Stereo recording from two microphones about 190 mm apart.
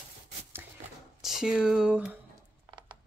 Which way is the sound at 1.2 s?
Centre (ahead or behind).